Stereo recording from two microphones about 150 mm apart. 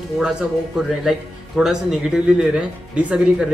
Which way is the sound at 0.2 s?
5° right (ahead or behind).